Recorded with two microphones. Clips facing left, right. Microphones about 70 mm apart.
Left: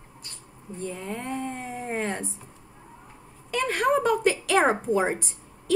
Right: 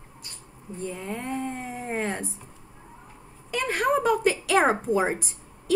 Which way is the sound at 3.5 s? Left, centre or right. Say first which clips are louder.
Left 1 dB; centre.